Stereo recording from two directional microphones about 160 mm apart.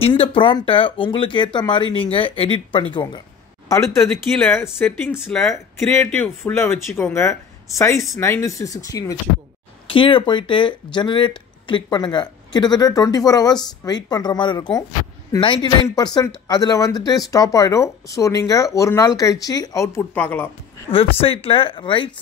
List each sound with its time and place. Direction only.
0.0 s speech: 35° left (ahead or behind)
4.4 s speech: 15° left (ahead or behind)
5.5 s speech: 15° left (ahead or behind)
9.8 s speech: 30° left (ahead or behind); by 20.4 s 10° left (ahead or behind)
20.9 s speech: 35° left (ahead or behind)